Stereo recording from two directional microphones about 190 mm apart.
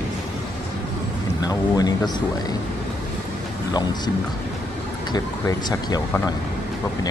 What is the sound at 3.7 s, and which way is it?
Speech, 20° left (ahead or behind).